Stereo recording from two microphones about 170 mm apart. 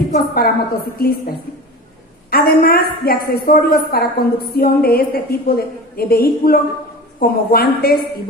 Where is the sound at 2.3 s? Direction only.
65° left (ahead or behind).